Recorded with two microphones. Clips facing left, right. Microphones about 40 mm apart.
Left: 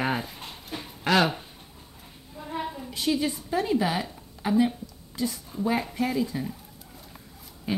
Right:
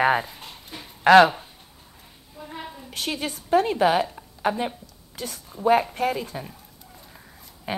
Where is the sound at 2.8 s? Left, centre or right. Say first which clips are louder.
Left 2 dB; right.